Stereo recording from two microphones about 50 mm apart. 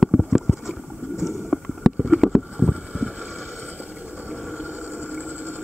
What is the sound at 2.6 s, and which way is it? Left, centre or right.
Boat, right.